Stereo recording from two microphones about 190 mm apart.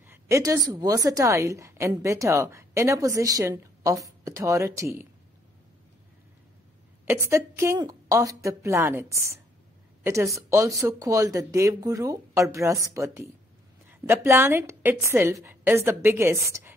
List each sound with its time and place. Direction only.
0.0 s a woman's voice: 15° right (ahead or behind)
7.1 s a woman's voice: 15° right (ahead or behind)